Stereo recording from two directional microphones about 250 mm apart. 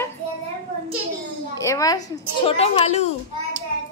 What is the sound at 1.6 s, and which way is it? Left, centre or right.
A woman's voice, centre.